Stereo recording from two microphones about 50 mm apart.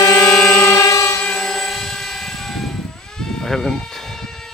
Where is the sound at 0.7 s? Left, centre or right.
Left.